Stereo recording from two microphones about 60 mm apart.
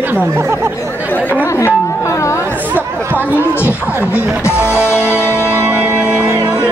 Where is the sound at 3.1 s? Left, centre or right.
Left.